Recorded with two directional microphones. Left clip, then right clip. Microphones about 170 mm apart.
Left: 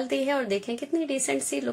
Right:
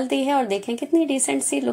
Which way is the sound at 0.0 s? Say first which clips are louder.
Right 5 dB; 10° right (ahead or behind).